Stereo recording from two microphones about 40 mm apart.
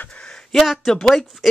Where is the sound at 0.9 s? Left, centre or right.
Centre.